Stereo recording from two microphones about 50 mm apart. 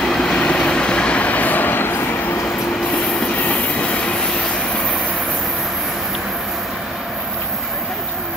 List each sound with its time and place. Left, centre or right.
0.0 s train: centre
0.3 s train: centre; by 2.0 s left
3.3 s train: left